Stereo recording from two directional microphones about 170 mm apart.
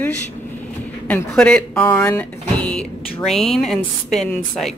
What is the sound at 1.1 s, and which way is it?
Speech, 5° left (ahead or behind).